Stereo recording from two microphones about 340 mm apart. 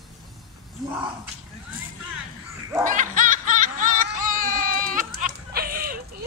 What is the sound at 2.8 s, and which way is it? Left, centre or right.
Music, right.